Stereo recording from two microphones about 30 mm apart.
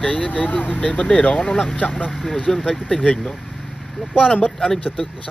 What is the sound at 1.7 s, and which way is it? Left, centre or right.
Speech, left.